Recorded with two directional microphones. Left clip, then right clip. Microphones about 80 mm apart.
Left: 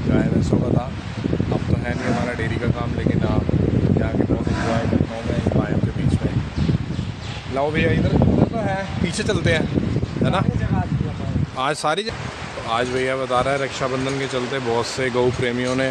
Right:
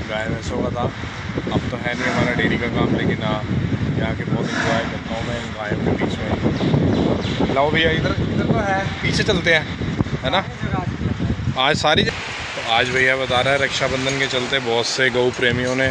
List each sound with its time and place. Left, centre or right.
9.0 s speech: centre
11.6 s speech: centre
13.0 s speech: centre
14.3 s speech: left